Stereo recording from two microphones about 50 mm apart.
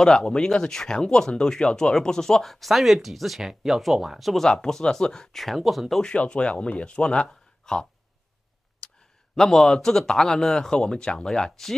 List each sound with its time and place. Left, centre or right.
0.0 s speech: centre
4.5 s speech: centre
6.0 s speech: centre
7.2 s a sound: centre
9.3 s speech: centre